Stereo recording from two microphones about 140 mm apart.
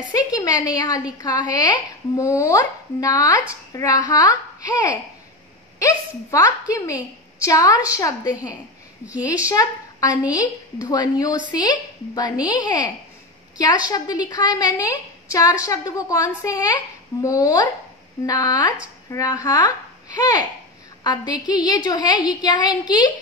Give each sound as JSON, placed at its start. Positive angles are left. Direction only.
{"t": 0.1, "sound": "a woman's voice", "side_deg": 25}
{"t": 9.0, "sound": "a woman's voice", "side_deg": -10}
{"t": 9.5, "sound": "a woman's voice", "side_deg": 25}